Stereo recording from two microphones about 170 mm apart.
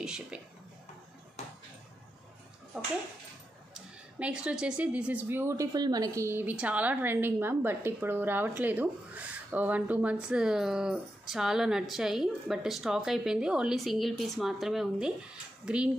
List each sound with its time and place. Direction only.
0.0 s speech: 5° right (ahead or behind)
1.4 s a sound: 40° left (ahead or behind)
3.7 s a woman's voice: 5° right (ahead or behind)